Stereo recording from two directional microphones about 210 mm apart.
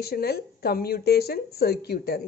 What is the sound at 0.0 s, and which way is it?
Speech, 50° left (ahead or behind).